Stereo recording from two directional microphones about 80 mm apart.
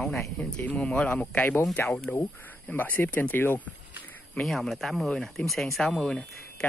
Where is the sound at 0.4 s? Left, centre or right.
Centre.